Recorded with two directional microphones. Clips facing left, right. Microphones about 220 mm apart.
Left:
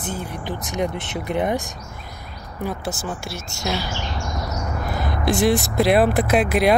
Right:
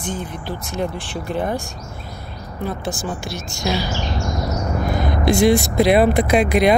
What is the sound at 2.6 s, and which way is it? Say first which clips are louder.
Speech: right 2 dB; 5° left (ahead or behind).